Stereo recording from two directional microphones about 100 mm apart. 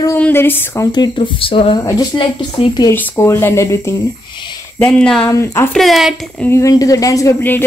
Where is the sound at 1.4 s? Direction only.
65° left (ahead or behind).